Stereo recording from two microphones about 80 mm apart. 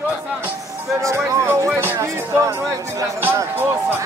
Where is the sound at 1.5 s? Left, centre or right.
Right.